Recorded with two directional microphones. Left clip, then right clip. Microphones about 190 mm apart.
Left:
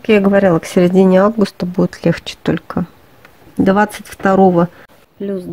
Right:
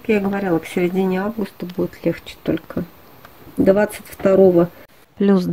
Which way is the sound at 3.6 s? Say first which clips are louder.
Left 2 dB; 35° left (ahead or behind).